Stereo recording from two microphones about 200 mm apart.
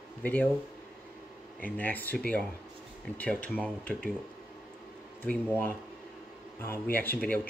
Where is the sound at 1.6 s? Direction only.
10° left (ahead or behind).